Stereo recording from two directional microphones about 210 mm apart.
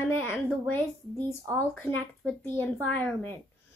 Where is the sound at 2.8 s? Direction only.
5° left (ahead or behind).